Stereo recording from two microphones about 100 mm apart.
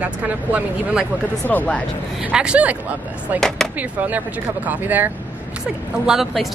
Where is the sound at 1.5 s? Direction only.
15° left (ahead or behind).